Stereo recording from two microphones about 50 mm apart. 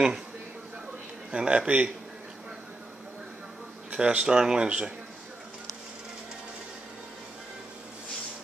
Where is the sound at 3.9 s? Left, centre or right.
Right.